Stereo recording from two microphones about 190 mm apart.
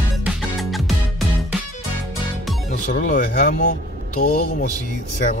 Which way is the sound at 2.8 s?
40° left (ahead or behind).